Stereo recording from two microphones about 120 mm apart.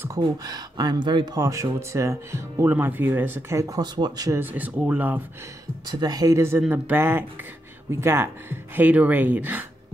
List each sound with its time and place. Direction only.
0.2 s speech: 35° right (ahead or behind)
4.3 s speech: 15° right (ahead or behind)
5.9 s speech: 35° right (ahead or behind); by 9.7 s 15° right (ahead or behind)